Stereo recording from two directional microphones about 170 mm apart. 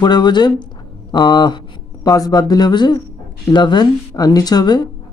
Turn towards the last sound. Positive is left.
turn(degrees=25)  # may be behind; listen again after turning